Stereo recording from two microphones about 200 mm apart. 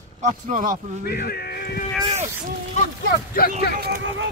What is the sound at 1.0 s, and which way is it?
Speech, 50° left (ahead or behind).